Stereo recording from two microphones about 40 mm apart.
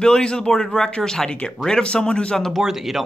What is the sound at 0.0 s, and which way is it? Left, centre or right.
Speech, centre.